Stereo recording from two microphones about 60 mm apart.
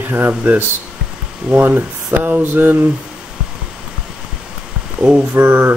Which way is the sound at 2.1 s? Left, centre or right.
Right.